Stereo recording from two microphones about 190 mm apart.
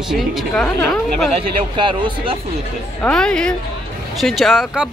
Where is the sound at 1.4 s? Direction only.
25° right (ahead or behind).